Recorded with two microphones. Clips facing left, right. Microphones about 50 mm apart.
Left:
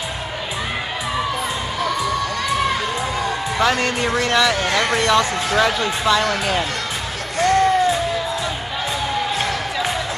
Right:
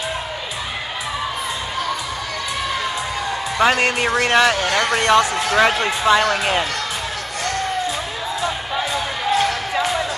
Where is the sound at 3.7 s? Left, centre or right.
Right.